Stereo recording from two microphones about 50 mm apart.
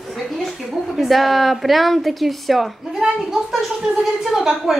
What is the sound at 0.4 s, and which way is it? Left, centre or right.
A woman's voice, centre.